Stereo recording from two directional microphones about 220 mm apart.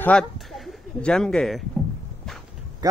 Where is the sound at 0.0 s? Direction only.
5° left (ahead or behind).